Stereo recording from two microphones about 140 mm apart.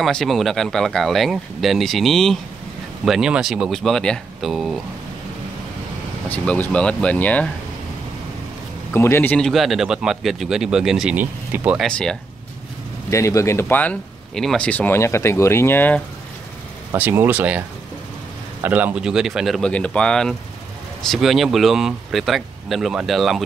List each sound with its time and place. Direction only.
0.0 s speech: centre (ahead or behind)
6.2 s speech: 10° left (ahead or behind)
8.9 s speech: 15° left (ahead or behind)
9.4 s speech: centre (ahead or behind)
11.8 s speech: 5° left (ahead or behind)
13.1 s speech: 20° left (ahead or behind)
16.9 s speech: 15° right (ahead or behind)